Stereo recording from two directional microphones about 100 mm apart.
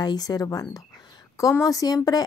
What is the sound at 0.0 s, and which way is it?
Speech, 40° left (ahead or behind).